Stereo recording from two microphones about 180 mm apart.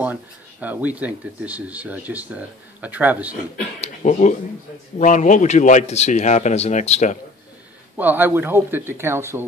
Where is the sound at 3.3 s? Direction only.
45° left (ahead or behind).